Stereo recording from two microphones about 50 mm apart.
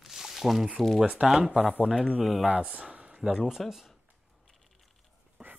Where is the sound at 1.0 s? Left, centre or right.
Centre.